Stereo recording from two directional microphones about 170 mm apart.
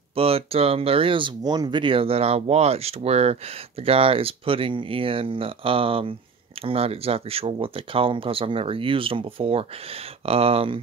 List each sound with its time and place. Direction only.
0.1 s speech: 35° right (ahead or behind)